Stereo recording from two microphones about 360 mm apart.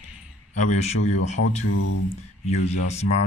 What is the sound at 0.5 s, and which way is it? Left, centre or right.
Speech, centre.